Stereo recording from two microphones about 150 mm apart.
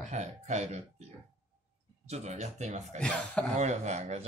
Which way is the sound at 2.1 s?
50° right (ahead or behind).